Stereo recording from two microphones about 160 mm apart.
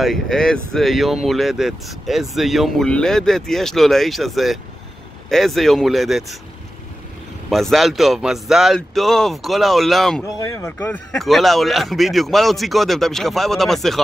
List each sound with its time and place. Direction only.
0.0 s speech: centre (ahead or behind)
7.4 s speech: centre (ahead or behind)